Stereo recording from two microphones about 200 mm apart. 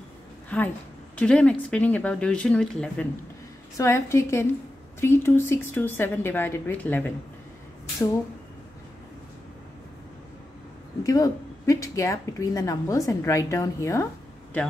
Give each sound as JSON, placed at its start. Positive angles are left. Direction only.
{"t": 0.5, "sound": "a woman's voice", "side_deg": 10}
{"t": 3.7, "sound": "a woman's voice", "side_deg": 15}
{"t": 11.1, "sound": "a woman's voice", "side_deg": 15}